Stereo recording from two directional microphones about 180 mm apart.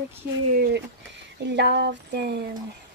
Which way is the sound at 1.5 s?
70° right (ahead or behind).